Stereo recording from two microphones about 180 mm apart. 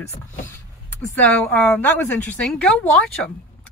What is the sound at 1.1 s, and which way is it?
Speech, 10° left (ahead or behind).